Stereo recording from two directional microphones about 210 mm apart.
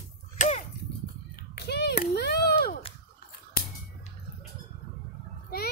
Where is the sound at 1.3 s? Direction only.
50° left (ahead or behind).